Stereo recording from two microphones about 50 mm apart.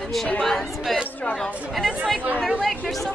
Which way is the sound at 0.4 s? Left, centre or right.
Centre.